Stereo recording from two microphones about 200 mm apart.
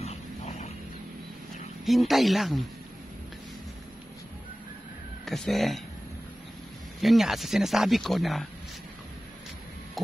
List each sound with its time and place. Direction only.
0.0 s wild animals: 35° left (ahead or behind)
1.9 s speech: centre (ahead or behind)
5.2 s speech: centre (ahead or behind)
7.0 s speech: centre (ahead or behind)
10.0 s heart murmur: centre (ahead or behind)